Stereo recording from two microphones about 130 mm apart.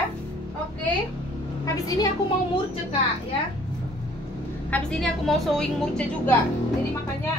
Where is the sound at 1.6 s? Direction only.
25° left (ahead or behind).